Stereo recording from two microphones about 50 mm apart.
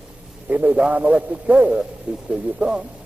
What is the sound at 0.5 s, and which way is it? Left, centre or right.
A man's voice, right.